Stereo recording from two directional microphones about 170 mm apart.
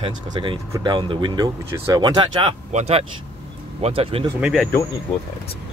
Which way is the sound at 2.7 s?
35° right (ahead or behind).